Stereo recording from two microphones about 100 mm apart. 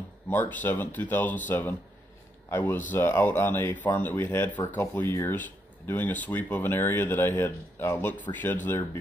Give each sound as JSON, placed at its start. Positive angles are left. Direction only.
{"t": 0.3, "sound": "speech", "side_deg": 15}